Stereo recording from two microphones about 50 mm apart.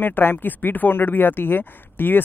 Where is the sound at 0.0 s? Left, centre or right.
Left.